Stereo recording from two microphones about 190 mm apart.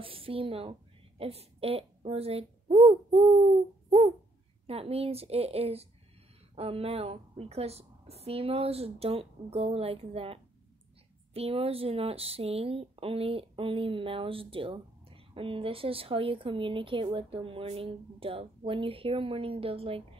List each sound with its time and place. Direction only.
0.0 s a woman's voice: 30° right (ahead or behind)